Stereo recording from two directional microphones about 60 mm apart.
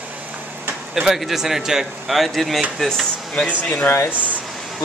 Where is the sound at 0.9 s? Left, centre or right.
Centre.